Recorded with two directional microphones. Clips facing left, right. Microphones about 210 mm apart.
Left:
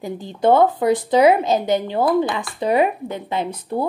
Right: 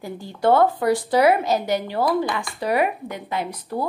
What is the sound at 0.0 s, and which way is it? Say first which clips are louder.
A woman's voice: left 3 dB; 20° left (ahead or behind).